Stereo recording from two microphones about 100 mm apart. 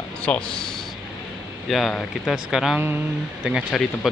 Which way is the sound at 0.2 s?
10° left (ahead or behind).